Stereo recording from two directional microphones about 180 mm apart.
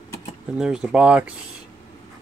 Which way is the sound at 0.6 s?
5° right (ahead or behind).